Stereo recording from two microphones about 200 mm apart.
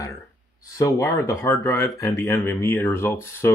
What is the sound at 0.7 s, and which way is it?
Speech, 15° left (ahead or behind).